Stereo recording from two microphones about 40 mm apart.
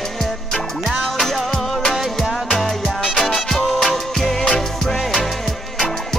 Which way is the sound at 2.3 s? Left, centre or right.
Centre.